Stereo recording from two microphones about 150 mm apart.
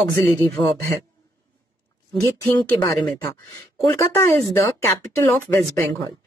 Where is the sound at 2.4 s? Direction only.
15° left (ahead or behind).